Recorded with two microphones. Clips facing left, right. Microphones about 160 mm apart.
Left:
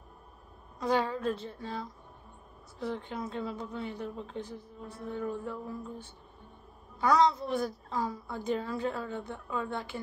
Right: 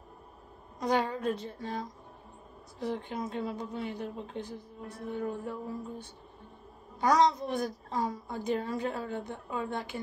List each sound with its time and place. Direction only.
0.7 s a woman's voice: 15° right (ahead or behind)
7.1 s a woman's voice: 20° right (ahead or behind)